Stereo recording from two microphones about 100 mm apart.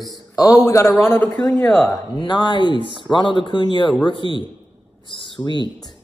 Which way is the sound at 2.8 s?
55° right (ahead or behind).